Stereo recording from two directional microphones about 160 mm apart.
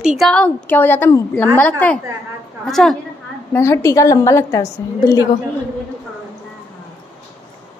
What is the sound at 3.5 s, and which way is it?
A woman's voice, 15° left (ahead or behind).